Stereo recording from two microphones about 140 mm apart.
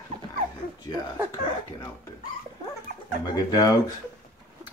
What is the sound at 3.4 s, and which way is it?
Speech, 25° left (ahead or behind).